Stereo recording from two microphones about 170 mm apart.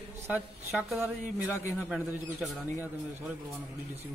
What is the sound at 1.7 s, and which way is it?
A man's voice, 5° right (ahead or behind).